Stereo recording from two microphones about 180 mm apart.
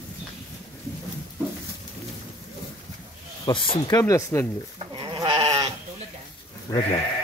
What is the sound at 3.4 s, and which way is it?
Speech, 30° left (ahead or behind).